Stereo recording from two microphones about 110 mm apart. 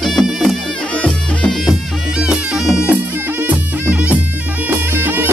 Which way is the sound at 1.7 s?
5° right (ahead or behind).